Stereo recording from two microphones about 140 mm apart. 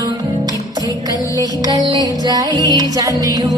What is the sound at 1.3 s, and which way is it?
Music, 25° left (ahead or behind).